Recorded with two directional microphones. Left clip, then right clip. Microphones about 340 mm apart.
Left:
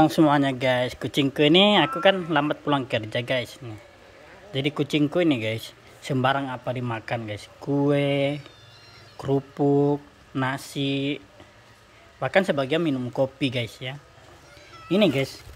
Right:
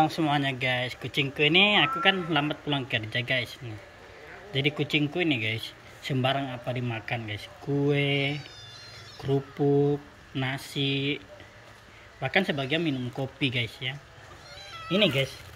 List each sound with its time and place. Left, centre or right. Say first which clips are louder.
0.0 s speech: left 6 dB; left
7.6 s speech: left 4 dB; left
7.9 s speech: left 4 dB; centre
9.3 s speech: left 3 dB; left
10.3 s speech: left 4 dB; centre
12.2 s speech: left 5 dB; centre